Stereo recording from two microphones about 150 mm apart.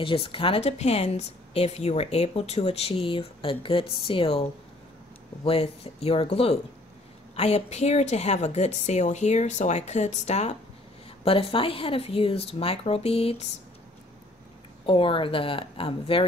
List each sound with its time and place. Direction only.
0.0 s a woman's voice: 35° left (ahead or behind)
14.9 s speech: 35° left (ahead or behind)